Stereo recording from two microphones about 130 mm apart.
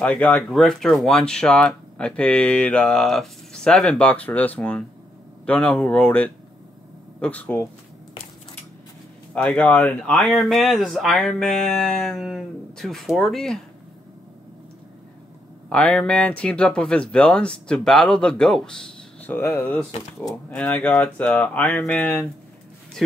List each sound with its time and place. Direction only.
0.0 s speech: 10° left (ahead or behind)
9.3 s speech: 10° left (ahead or behind)
15.7 s speech: 5° left (ahead or behind)